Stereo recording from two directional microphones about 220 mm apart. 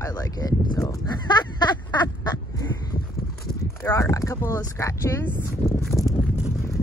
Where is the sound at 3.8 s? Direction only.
15° left (ahead or behind).